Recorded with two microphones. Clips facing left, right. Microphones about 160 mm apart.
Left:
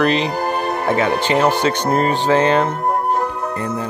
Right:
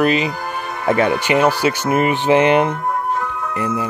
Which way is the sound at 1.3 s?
10° right (ahead or behind).